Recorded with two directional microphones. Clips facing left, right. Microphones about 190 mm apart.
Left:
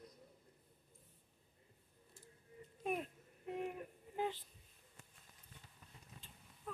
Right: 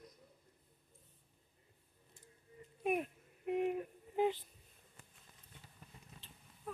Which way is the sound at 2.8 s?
15° right (ahead or behind).